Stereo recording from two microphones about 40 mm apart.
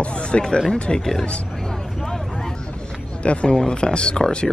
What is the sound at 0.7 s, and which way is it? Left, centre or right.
Speech, left.